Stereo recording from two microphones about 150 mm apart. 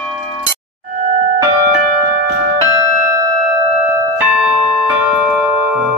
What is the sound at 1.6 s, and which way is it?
Music, 50° right (ahead or behind).